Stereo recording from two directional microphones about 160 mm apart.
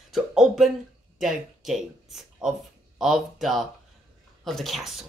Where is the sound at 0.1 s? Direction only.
Centre (ahead or behind).